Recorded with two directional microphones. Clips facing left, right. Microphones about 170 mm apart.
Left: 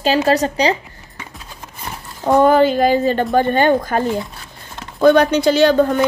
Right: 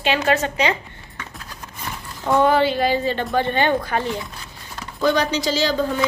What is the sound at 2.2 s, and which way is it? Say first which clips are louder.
A woman's voice: left 5 dB; 45° left (ahead or behind).